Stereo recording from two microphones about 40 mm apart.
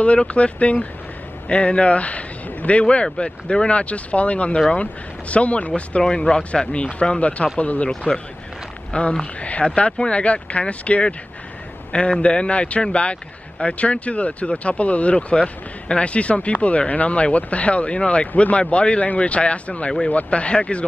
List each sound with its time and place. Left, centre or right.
0.0 s speech: left
6.0 s speech: centre
8.9 s speech: left